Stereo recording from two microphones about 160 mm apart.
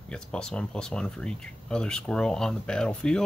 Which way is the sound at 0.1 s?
5° left (ahead or behind).